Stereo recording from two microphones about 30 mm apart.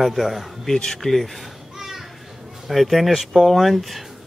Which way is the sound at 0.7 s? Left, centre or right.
Centre.